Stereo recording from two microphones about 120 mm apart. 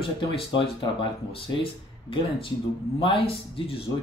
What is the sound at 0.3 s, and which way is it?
Speech, 45° left (ahead or behind).